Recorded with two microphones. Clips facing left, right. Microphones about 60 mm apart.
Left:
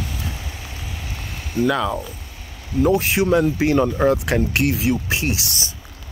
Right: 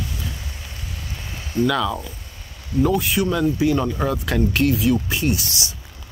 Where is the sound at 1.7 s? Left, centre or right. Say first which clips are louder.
Left 2 dB; left.